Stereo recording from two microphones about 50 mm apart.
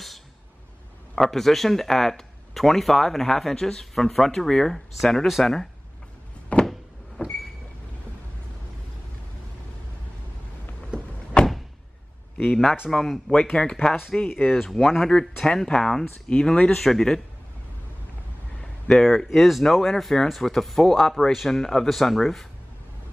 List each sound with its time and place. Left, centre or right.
1.1 s speech: centre
6.5 s a sound: left
7.2 s vehicle: left
11.4 s door: left
12.4 s speech: centre
13.3 s speech: centre
14.2 s speech: left
14.6 s speech: centre
15.0 s speech: centre
18.9 s speech: centre